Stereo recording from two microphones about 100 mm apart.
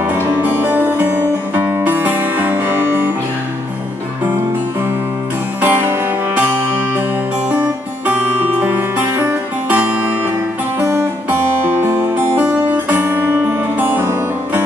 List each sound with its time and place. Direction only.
0.0 s music: 15° right (ahead or behind)
5.6 s music: 20° right (ahead or behind)
7.5 s music: 15° right (ahead or behind)